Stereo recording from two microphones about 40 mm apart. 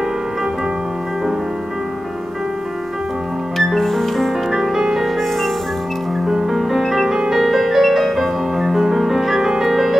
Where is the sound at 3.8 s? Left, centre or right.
Centre.